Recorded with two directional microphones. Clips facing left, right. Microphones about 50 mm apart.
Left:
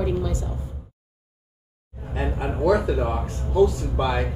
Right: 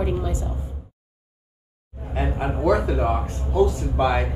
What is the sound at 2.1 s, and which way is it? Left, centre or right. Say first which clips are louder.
Speech: right 2 dB; right.